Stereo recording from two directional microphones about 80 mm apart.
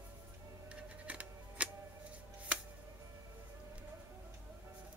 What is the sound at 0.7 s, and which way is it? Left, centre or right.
Music, centre.